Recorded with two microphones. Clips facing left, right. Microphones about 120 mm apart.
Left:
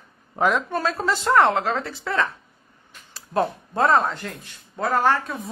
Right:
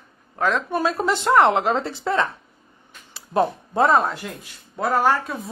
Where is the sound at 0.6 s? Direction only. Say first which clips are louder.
Right 2 dB; 15° right (ahead or behind).